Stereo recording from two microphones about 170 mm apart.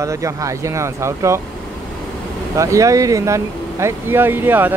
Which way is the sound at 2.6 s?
20° right (ahead or behind).